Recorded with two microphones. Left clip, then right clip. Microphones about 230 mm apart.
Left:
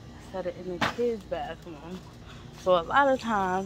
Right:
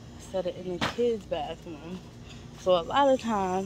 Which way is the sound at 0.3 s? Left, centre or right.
Centre.